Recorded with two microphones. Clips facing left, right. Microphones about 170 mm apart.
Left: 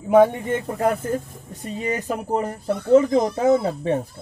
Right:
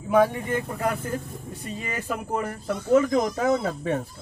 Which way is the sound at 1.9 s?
20° left (ahead or behind).